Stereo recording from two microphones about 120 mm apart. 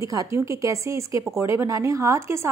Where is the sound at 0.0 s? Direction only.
30° right (ahead or behind).